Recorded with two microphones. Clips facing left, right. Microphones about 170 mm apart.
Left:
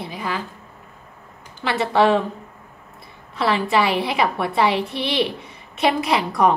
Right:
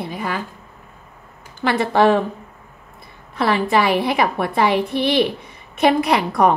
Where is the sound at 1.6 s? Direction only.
50° right (ahead or behind).